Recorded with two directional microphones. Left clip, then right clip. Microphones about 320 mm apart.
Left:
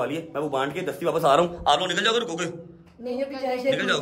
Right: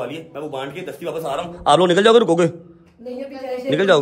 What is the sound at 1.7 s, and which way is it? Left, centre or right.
Speech, centre.